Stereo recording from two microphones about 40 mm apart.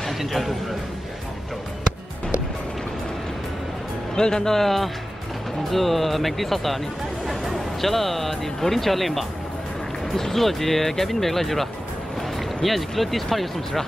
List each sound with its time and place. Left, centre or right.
0.3 s speech: centre
4.1 s speech: centre